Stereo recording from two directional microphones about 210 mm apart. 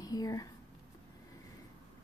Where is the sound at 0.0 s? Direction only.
15° left (ahead or behind).